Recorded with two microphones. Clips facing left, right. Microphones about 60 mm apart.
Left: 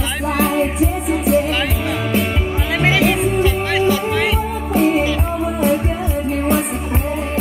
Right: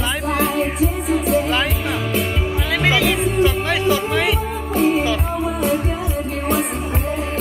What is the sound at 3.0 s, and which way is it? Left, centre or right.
Music, centre.